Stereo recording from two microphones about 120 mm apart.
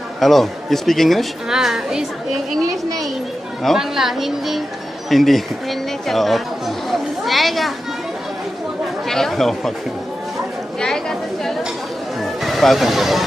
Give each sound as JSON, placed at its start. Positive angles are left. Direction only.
{"t": 0.2, "sound": "a woman's voice", "side_deg": 0}
{"t": 3.6, "sound": "a woman's voice", "side_deg": -5}
{"t": 6.9, "sound": "a sound", "side_deg": 0}
{"t": 9.1, "sound": "a woman's voice", "side_deg": 0}
{"t": 10.8, "sound": "chatter", "side_deg": 5}
{"t": 12.2, "sound": "speech", "side_deg": 0}